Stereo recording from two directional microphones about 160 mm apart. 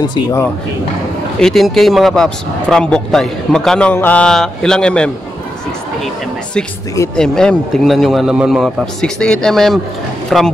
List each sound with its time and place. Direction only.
0.1 s speech: 20° left (ahead or behind)
1.4 s speech: centre (ahead or behind)
7.2 s speech: 5° left (ahead or behind)